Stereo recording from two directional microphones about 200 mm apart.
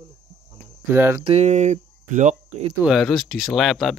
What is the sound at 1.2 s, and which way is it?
Speech, 30° right (ahead or behind).